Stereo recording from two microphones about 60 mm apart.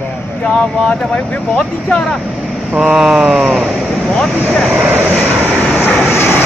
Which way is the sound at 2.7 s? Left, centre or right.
Centre.